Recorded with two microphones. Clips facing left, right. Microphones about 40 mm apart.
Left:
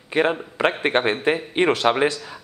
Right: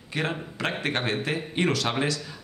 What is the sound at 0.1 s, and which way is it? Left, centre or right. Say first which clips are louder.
Speech: left 9 dB; left.